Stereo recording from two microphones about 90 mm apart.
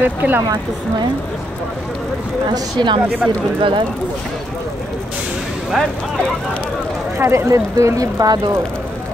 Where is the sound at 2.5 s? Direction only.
55° right (ahead or behind).